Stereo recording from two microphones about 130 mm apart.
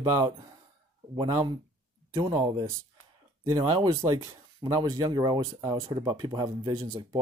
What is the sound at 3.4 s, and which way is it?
Speech, 35° right (ahead or behind).